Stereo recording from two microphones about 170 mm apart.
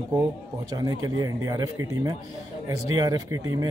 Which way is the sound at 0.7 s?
20° right (ahead or behind).